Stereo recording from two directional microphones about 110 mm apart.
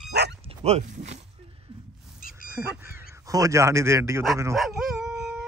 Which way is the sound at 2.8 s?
20° right (ahead or behind).